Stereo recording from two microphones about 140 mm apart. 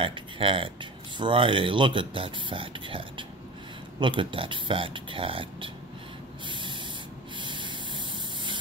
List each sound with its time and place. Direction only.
0.0 s speech: 40° right (ahead or behind)
6.4 s spray: 35° right (ahead or behind)